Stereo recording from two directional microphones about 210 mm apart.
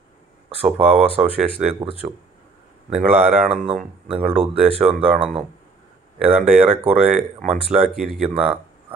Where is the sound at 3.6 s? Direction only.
25° right (ahead or behind).